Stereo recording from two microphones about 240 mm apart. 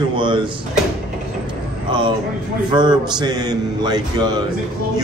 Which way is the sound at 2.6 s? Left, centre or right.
Centre.